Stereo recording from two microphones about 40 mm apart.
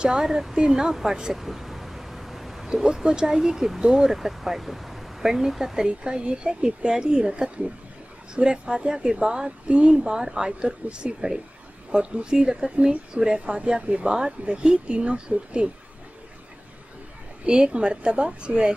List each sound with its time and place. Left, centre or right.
0.0 s speech: right
0.3 s speech: centre
1.4 s a sound: centre
2.7 s speech: centre
5.9 s speech: right
17.5 s speech: right